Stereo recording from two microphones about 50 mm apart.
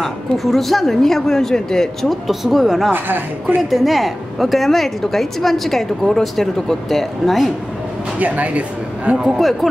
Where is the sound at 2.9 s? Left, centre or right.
Right.